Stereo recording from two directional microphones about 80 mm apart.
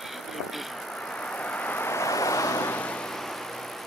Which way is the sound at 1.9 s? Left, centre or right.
Left.